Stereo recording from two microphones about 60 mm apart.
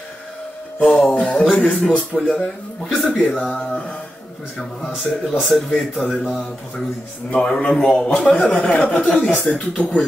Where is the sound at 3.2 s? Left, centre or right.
Left.